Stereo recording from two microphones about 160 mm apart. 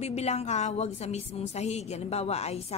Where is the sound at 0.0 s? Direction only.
40° left (ahead or behind).